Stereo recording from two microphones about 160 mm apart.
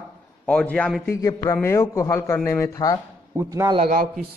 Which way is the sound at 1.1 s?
20° left (ahead or behind).